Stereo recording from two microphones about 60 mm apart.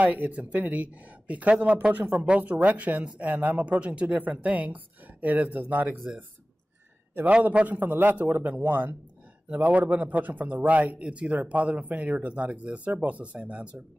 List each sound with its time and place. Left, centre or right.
0.0 s speech: right
7.2 s a man's voice: right